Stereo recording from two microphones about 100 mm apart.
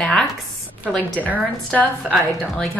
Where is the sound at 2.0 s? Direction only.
10° right (ahead or behind).